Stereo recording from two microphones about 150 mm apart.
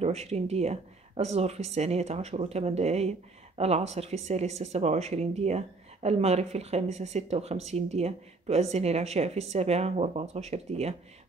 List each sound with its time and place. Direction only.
0.0 s speech: 45° right (ahead or behind)